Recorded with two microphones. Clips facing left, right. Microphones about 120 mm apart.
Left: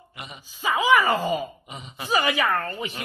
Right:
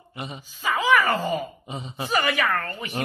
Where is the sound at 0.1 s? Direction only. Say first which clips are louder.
Right 6 dB; 30° right (ahead or behind).